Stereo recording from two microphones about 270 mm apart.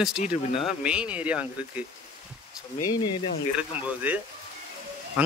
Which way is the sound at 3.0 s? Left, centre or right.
Left.